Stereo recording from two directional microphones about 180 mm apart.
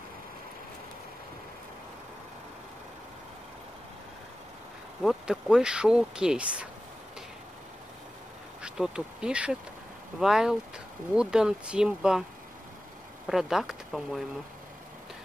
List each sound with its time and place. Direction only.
5.0 s speech: 5° right (ahead or behind)
8.6 s speech: 5° right (ahead or behind)
13.3 s speech: centre (ahead or behind)